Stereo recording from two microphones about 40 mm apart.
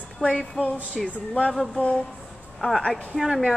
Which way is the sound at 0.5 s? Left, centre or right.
Left.